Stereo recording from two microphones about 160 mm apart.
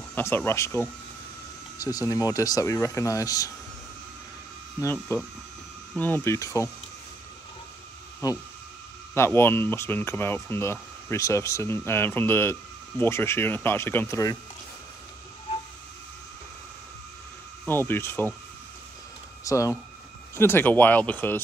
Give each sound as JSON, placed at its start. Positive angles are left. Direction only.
{"t": 0.1, "sound": "speech", "side_deg": 15}
{"t": 4.9, "sound": "speech", "side_deg": 15}
{"t": 9.1, "sound": "speech", "side_deg": 15}
{"t": 17.6, "sound": "speech", "side_deg": 15}
{"t": 19.4, "sound": "speech", "side_deg": 20}